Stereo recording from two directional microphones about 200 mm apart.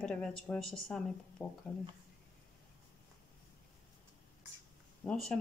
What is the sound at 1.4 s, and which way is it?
Speech, 15° left (ahead or behind).